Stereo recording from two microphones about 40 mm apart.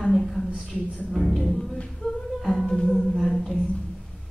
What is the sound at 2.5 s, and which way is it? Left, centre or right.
Music, centre.